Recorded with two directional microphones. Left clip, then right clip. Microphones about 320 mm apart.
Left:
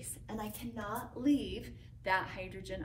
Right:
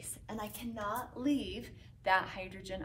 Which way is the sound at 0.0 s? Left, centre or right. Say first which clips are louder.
Even; centre.